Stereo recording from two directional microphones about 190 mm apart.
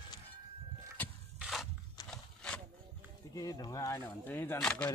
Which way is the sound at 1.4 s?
Centre (ahead or behind).